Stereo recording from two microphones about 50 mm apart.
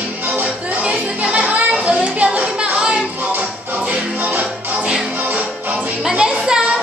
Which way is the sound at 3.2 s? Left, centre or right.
Right.